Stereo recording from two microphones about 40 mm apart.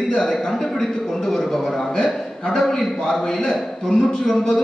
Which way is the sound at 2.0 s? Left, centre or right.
Centre.